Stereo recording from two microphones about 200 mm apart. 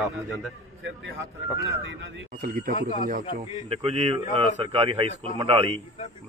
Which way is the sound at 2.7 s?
35° left (ahead or behind).